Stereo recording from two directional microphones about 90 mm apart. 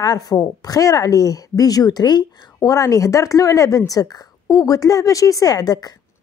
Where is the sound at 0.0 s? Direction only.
45° left (ahead or behind).